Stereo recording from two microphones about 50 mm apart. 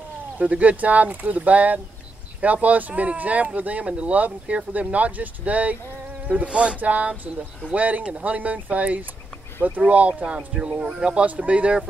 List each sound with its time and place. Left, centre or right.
0.4 s speech: right